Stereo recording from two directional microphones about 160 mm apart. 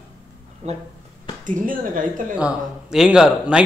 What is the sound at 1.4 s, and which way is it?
Speech, 55° right (ahead or behind).